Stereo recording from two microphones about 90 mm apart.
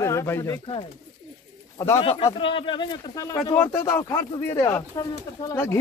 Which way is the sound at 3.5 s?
25° left (ahead or behind).